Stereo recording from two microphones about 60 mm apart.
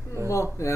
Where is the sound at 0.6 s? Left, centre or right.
Left.